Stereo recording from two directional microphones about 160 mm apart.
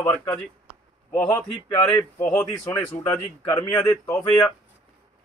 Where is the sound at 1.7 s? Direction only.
20° left (ahead or behind).